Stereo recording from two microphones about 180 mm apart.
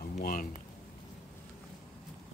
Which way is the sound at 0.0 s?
50° left (ahead or behind).